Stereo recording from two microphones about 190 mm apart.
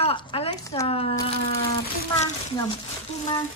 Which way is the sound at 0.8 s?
30° left (ahead or behind).